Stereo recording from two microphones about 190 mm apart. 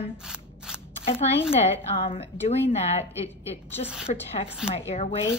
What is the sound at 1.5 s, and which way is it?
A woman's voice, 35° left (ahead or behind).